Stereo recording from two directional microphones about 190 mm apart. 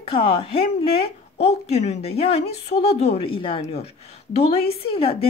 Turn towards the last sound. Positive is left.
turn(degrees=30)  # may be behind; listen again after turning